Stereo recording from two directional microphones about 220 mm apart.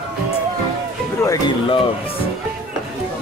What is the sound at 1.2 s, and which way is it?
Speech, 20° left (ahead or behind).